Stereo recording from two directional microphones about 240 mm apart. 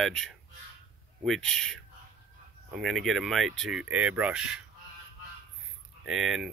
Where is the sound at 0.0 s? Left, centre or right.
Centre.